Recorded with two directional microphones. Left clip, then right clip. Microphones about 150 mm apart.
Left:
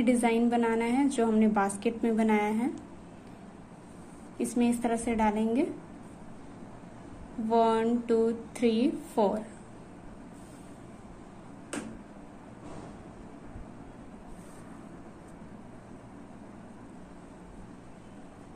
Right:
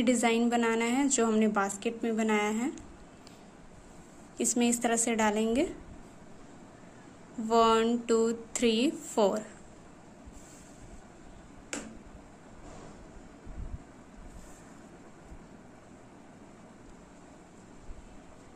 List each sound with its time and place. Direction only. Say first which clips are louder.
0.0 s a woman's voice: left 1 dB; 25° right (ahead or behind)
1.6 s a woman's voice: left 2 dB; 10° right (ahead or behind)
4.4 s a woman's voice: even; 30° right (ahead or behind)
7.4 s speech: right 1 dB; 30° right (ahead or behind)